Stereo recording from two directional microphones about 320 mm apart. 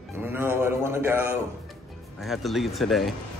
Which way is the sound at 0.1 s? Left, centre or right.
Centre.